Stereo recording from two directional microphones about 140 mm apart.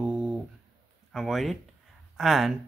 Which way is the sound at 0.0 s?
10° right (ahead or behind).